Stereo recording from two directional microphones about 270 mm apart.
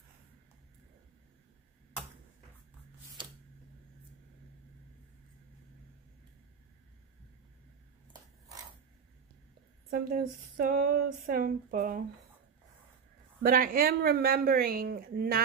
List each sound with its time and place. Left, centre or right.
9.8 s speech: right
13.4 s speech: right